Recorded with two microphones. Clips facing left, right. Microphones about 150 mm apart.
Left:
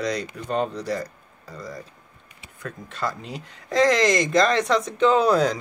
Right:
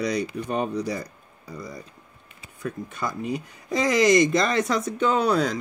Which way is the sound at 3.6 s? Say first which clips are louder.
Left 3 dB; 90° left.